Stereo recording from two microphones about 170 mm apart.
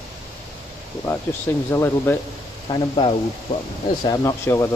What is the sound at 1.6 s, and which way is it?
Speech, 15° left (ahead or behind).